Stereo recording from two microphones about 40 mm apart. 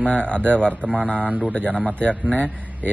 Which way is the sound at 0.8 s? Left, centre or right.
Right.